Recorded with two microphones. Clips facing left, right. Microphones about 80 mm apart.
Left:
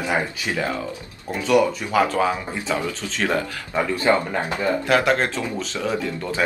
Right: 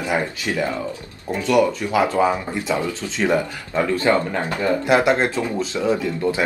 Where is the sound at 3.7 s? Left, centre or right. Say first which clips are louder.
Right 1 dB; centre.